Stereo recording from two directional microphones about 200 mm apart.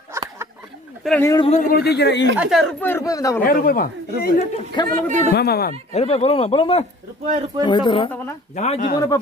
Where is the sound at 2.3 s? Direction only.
5° right (ahead or behind); by 3.4 s 15° left (ahead or behind).